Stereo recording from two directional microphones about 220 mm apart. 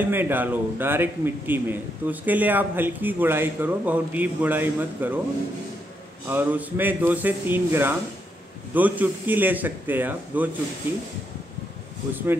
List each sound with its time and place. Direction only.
0.0 s speech: 10° right (ahead or behind)
6.3 s speech: 10° right (ahead or behind)